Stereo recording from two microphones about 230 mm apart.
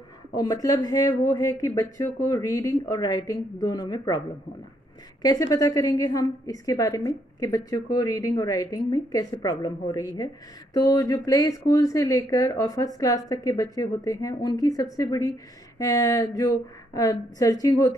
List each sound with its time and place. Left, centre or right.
0.4 s a woman's voice: centre
5.2 s a woman's voice: centre